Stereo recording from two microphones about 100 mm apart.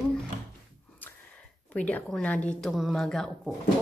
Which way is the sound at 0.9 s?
15° left (ahead or behind).